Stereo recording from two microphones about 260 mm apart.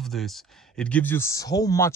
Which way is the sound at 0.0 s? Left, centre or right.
Centre.